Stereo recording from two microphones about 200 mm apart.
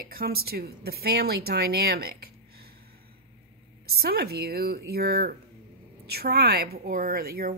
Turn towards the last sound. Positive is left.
turn(degrees=-50)  # may be behind; listen again after turning